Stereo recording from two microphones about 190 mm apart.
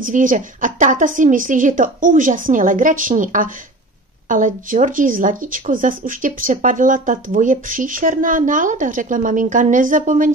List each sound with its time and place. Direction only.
0.0 s speech: 45° right (ahead or behind)